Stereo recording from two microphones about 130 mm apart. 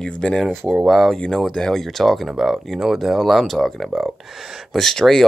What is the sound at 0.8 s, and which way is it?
Speech, centre (ahead or behind).